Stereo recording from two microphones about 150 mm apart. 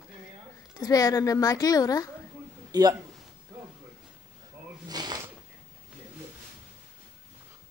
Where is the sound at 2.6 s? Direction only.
25° right (ahead or behind).